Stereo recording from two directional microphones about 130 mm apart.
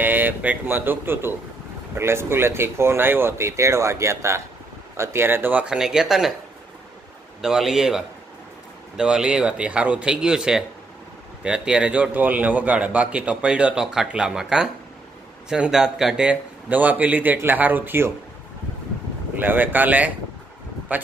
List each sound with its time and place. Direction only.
0.0 s a man's voice: 15° right (ahead or behind)
7.4 s a man's voice: centre (ahead or behind)
19.4 s a man's voice: 15° right (ahead or behind)